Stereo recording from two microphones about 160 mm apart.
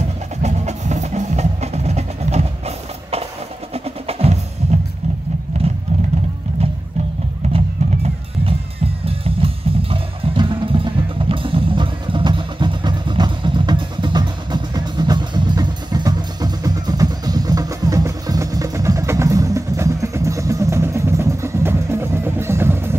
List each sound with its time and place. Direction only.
0.4 s music: 45° right (ahead or behind)
3.7 s percussion: 40° right (ahead or behind)
5.5 s vehicle: 45° right (ahead or behind)
7.5 s music: 35° right (ahead or behind); by 22.9 s 15° right (ahead or behind)